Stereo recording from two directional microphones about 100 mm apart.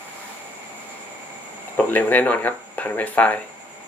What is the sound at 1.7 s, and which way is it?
Speech, 15° left (ahead or behind).